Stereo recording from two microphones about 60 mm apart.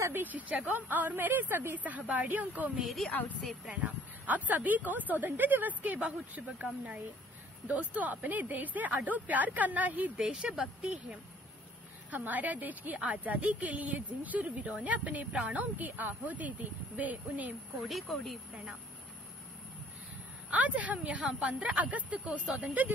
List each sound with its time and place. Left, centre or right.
0.1 s a woman's voice: right
2.8 s speech: centre
3.1 s a woman's voice: left
3.8 s a woman's voice: right
10.1 s speech: centre
10.8 s a woman's voice: centre
18.0 s speech: centre
20.4 s a woman's voice: right